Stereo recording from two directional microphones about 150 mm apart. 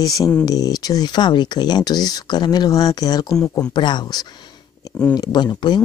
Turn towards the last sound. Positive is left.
turn(degrees=30)  # may be behind; listen again after turning